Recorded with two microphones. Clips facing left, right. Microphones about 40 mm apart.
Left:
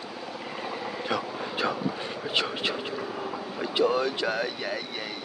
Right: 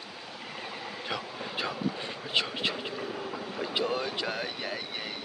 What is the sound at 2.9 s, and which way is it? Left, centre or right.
Vehicle, left.